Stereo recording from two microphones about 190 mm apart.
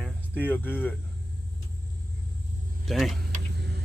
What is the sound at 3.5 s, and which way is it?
Vehicle, 60° right (ahead or behind).